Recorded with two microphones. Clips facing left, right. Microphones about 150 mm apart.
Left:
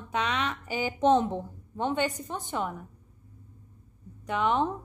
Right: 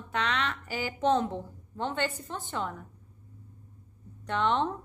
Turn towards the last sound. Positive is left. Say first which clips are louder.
# left 1 dB
turn(degrees=10)  # may be behind; listen again after turning